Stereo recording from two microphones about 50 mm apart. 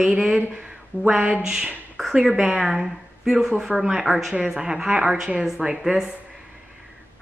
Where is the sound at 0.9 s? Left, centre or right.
Left.